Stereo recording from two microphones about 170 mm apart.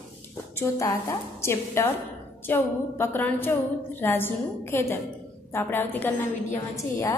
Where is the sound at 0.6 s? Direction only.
15° left (ahead or behind).